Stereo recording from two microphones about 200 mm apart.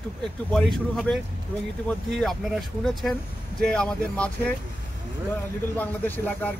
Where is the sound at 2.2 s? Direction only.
Centre (ahead or behind).